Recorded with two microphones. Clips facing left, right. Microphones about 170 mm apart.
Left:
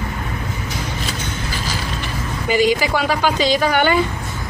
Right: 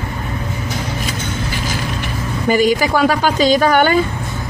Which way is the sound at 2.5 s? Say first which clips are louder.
Right 2 dB; 45° right (ahead or behind).